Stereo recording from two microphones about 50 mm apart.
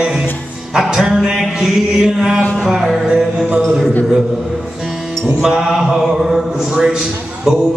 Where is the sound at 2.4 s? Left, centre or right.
Left.